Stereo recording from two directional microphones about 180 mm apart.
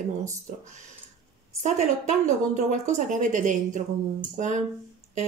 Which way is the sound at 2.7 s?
45° right (ahead or behind).